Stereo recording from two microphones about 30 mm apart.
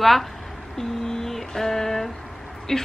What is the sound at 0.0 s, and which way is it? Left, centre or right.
Speech, centre.